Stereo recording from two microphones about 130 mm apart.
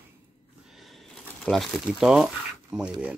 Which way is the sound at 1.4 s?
Centre (ahead or behind).